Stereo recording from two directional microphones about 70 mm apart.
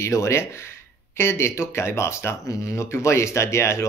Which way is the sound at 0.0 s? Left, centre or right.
Left.